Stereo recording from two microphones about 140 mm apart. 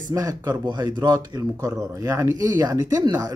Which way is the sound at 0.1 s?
25° right (ahead or behind).